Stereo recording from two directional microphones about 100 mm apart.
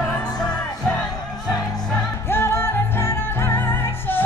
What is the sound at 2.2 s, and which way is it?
Music, 25° left (ahead or behind).